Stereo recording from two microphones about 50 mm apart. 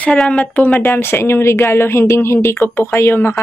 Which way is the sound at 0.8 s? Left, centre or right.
Left.